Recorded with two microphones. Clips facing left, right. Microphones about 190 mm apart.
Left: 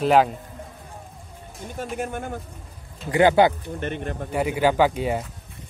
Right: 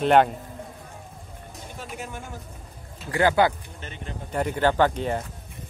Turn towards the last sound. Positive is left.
turn(degrees=10)  # may be behind; listen again after turning